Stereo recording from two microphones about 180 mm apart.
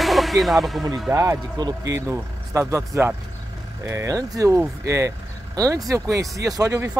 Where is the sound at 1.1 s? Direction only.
15° right (ahead or behind).